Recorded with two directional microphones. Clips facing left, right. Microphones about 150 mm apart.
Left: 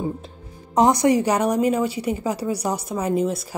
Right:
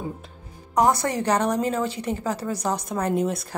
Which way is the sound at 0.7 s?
20° left (ahead or behind).